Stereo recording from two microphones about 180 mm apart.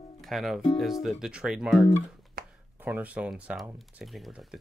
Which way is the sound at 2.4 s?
55° right (ahead or behind).